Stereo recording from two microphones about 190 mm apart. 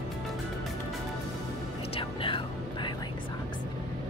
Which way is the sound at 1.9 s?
25° left (ahead or behind).